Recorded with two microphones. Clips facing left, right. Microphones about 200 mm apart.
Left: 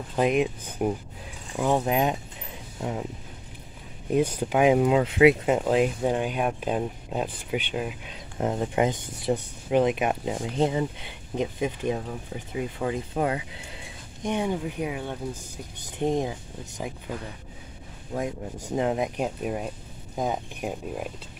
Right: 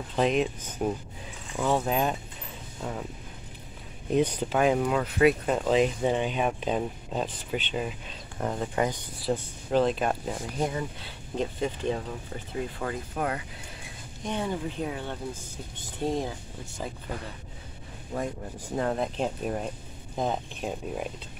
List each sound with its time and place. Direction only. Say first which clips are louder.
0.1 s speech: left 2 dB; 10° left (ahead or behind)
4.1 s speech: left 1 dB; 10° left (ahead or behind)
8.4 s speech: left 4 dB; 20° left (ahead or behind)
18.1 s speech: left 2 dB; 15° left (ahead or behind)